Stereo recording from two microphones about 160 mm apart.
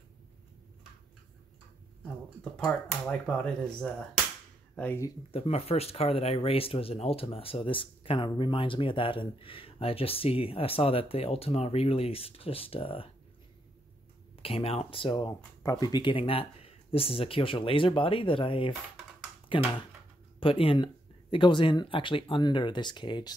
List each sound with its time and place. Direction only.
2.5 s speech: 5° left (ahead or behind)
5.3 s speech: 40° left (ahead or behind)
14.4 s speech: 35° left (ahead or behind)